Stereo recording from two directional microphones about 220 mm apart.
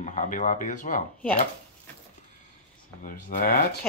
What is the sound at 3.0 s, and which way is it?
Speech, 40° left (ahead or behind).